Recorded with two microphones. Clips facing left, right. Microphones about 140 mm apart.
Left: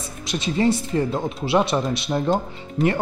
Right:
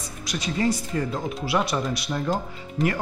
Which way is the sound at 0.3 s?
25° left (ahead or behind).